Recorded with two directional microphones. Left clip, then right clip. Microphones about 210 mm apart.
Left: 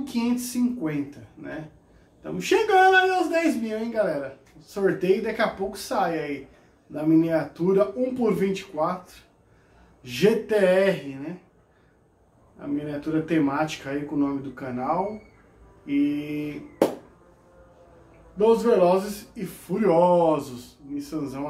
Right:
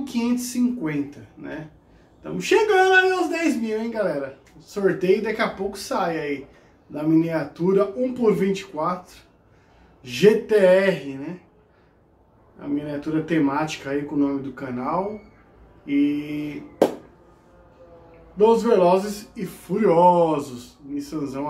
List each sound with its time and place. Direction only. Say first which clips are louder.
0.0 s speech: right 2 dB; centre (ahead or behind)
2.3 s speech: right 2 dB; centre (ahead or behind)
12.5 s speech: right 2 dB; centre (ahead or behind)
15.8 s mantra: right 3 dB; centre (ahead or behind)
16.3 s a sound: right 1 dB; centre (ahead or behind)
18.4 s speech: right 2 dB; centre (ahead or behind)